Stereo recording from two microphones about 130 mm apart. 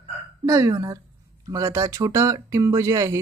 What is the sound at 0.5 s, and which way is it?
Speech, 25° right (ahead or behind).